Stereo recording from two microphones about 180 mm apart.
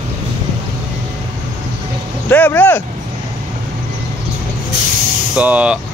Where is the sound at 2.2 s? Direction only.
10° left (ahead or behind).